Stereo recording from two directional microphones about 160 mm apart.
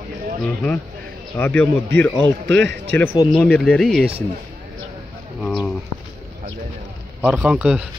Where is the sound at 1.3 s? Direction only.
10° left (ahead or behind).